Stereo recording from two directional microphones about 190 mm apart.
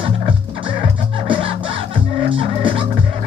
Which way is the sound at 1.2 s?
25° right (ahead or behind).